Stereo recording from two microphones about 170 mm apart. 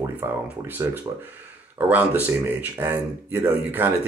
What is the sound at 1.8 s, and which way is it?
Speech, 10° right (ahead or behind).